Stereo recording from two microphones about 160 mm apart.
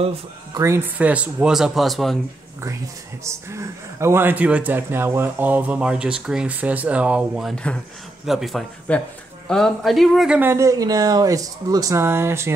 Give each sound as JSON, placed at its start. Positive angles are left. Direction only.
{"t": 0.6, "sound": "speech", "side_deg": -15}
{"t": 3.3, "sound": "speech", "side_deg": -15}